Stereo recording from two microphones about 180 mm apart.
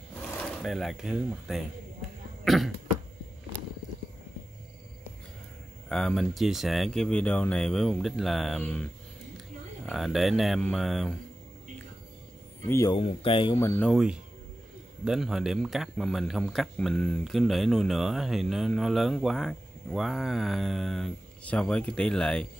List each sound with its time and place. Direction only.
0.6 s speech: centre (ahead or behind)
5.9 s a man's voice: 5° left (ahead or behind)
9.8 s a man's voice: centre (ahead or behind)
12.6 s speech: 15° left (ahead or behind)
12.9 s speech: 30° left (ahead or behind)
13.6 s speech: 15° left (ahead or behind)
13.8 s a man's voice: 5° right (ahead or behind)